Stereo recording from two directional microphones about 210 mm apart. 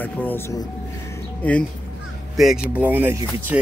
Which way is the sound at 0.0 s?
10° left (ahead or behind).